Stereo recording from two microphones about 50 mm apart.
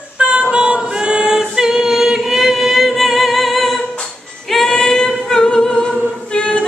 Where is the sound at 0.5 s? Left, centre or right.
Centre.